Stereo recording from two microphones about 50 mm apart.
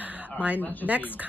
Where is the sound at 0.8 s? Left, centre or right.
Right.